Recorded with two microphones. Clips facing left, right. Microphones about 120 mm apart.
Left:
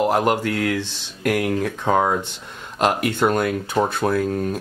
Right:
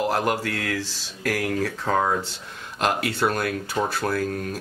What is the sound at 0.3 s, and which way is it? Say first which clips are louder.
Speech: left 5 dB; 15° left (ahead or behind).